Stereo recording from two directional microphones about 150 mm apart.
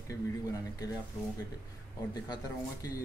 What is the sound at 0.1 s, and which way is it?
Speech, 25° left (ahead or behind).